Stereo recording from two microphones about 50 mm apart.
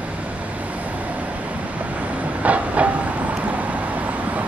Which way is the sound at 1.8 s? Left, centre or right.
Right.